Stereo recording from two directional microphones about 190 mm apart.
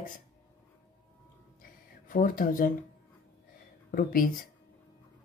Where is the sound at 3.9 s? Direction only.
45° left (ahead or behind).